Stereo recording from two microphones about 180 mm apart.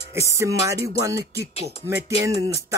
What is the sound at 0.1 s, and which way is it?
Music, 15° right (ahead or behind).